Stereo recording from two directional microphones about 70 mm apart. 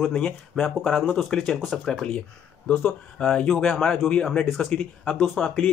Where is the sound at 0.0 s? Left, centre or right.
Centre.